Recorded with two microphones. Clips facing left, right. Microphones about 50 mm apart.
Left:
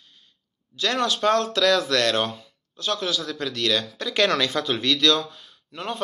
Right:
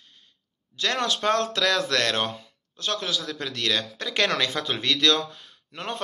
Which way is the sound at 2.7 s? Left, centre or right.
Right.